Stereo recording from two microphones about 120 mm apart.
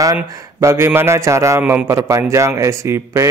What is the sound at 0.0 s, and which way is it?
A man's voice, 25° right (ahead or behind).